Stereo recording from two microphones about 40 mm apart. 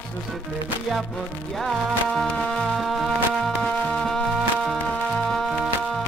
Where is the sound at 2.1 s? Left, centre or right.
Centre.